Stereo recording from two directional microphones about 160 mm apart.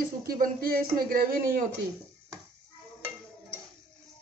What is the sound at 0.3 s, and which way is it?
Speech, 65° right (ahead or behind).